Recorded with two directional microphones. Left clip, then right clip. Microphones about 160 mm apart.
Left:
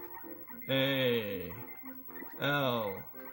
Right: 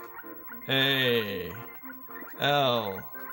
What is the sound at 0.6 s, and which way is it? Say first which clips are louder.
Music: right 5 dB; 35° right (ahead or behind).